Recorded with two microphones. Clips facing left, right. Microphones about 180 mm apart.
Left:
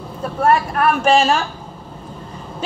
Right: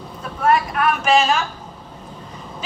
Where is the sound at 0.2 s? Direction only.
35° left (ahead or behind).